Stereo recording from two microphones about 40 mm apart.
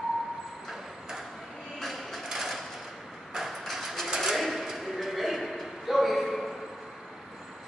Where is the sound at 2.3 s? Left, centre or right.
Centre.